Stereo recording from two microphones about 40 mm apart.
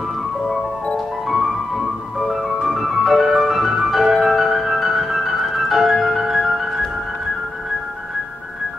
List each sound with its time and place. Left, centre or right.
1.3 s music: centre